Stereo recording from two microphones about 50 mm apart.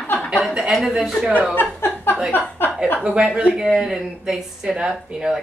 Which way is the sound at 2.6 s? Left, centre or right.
Left.